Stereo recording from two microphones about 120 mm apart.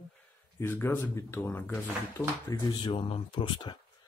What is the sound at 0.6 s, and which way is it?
Speech, 20° left (ahead or behind).